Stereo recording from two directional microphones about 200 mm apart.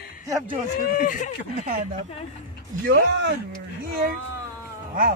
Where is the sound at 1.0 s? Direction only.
40° left (ahead or behind).